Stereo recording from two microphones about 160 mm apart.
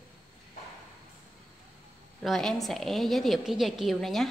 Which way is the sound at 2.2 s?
Centre (ahead or behind).